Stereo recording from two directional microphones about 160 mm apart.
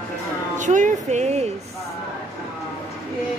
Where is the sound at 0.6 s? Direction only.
50° right (ahead or behind).